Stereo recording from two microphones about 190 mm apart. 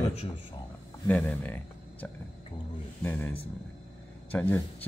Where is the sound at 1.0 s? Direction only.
10° left (ahead or behind).